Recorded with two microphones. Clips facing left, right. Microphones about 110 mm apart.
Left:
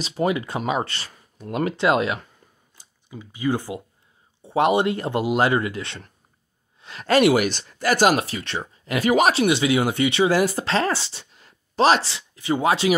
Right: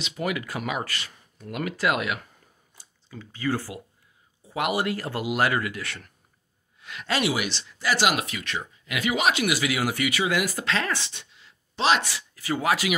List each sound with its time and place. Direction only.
0.0 s speech: 30° left (ahead or behind)
2.8 s speech: 15° left (ahead or behind)
6.8 s a sound: 35° left (ahead or behind)
7.1 s speech: 50° left (ahead or behind)
9.4 s speech: 25° left (ahead or behind)
11.3 s a sound: 45° left (ahead or behind)
12.0 s speech: 25° left (ahead or behind)